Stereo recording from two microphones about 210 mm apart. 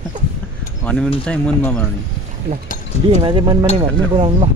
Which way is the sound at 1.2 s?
5° left (ahead or behind).